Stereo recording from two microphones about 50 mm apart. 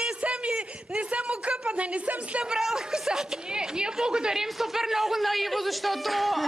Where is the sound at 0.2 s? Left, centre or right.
Right.